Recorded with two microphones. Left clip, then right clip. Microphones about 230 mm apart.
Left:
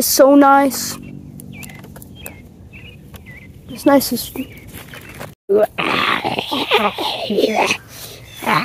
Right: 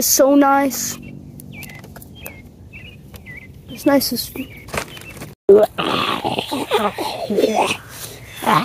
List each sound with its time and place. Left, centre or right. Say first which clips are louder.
0.0 s speech: left 3 dB; left
3.8 s speech: left 3 dB; left
5.5 s grunt: right 3 dB; centre
6.2 s speech: left 2 dB; left
7.0 s speech: left 2 dB; centre
7.6 s whispering: left 3 dB; centre